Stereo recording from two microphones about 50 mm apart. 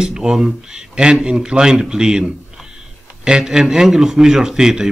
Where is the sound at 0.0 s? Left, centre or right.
Centre.